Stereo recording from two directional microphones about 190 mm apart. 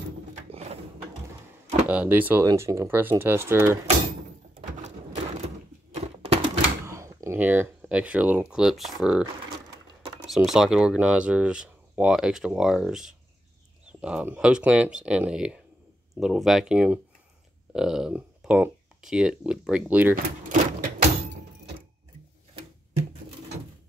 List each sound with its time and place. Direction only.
0.5 s a sound: 35° right (ahead or behind)
1.9 s speech: 10° right (ahead or behind)
4.6 s a sound: 40° right (ahead or behind)
6.9 s speech: 15° right (ahead or behind)
10.2 s speech: centre (ahead or behind)
20.2 s speech: 45° right (ahead or behind)